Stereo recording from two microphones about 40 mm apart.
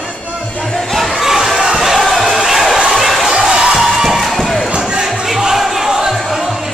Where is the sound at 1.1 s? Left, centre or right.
Centre.